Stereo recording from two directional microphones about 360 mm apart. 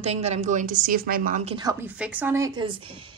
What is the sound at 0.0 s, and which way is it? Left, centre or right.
A woman's voice, centre.